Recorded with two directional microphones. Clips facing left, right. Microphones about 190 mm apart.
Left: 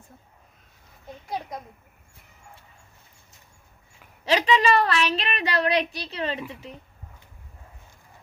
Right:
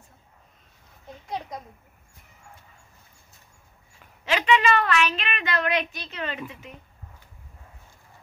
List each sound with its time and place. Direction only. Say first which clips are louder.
1.3 s a child's voice: left 1 dB; 5° left (ahead or behind)
4.2 s a woman's voice: left 1 dB; 35° left (ahead or behind)